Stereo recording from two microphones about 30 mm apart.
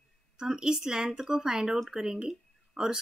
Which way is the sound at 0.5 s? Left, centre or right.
Right.